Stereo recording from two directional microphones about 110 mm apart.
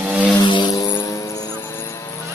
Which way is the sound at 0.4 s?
40° left (ahead or behind).